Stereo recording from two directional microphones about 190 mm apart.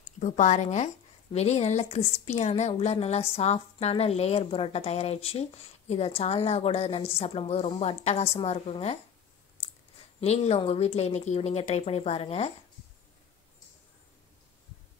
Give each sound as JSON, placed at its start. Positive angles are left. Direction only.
{"t": 0.2, "sound": "a woman's voice", "side_deg": 40}
{"t": 10.2, "sound": "a woman's voice", "side_deg": 35}